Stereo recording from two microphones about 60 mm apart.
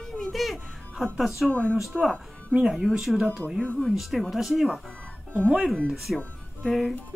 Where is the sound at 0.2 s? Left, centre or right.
Centre.